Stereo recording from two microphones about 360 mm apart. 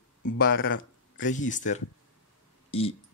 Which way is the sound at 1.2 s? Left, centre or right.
Left.